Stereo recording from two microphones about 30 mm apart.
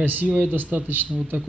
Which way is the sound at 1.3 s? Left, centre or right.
Right.